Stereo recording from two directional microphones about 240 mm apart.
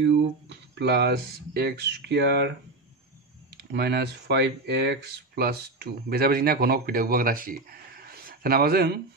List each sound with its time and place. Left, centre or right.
0.0 s speech: right
3.5 s speech: right